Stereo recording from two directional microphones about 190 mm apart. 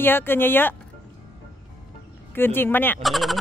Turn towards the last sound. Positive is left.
turn(degrees=0)  # may be behind; listen again after turning